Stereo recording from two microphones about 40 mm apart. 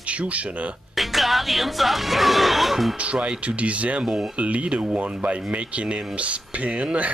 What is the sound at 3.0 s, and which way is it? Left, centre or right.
Speech, right.